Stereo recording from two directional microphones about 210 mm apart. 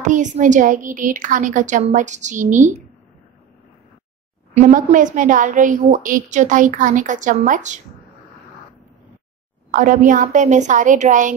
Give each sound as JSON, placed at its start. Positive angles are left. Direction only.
{"t": 0.0, "sound": "a woman's voice", "side_deg": -35}
{"t": 4.6, "sound": "a woman's voice", "side_deg": -35}
{"t": 9.7, "sound": "a woman's voice", "side_deg": -40}